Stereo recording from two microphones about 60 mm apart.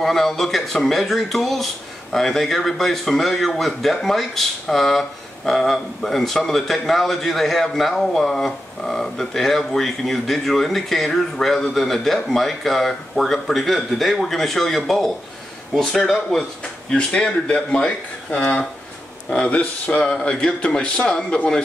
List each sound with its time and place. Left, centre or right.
0.0 s speech: centre
16.9 s speech: centre